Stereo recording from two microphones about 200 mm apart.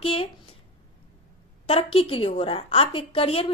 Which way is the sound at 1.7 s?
30° left (ahead or behind).